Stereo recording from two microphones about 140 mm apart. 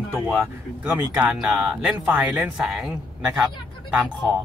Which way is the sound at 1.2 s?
5° right (ahead or behind).